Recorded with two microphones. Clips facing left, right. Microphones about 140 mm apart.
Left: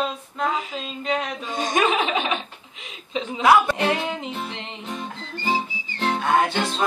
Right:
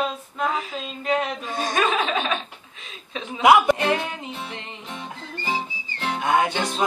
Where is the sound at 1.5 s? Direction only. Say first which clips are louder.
Left 2 dB; 20° left (ahead or behind).